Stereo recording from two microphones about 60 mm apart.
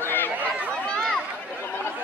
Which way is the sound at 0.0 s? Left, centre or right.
Left.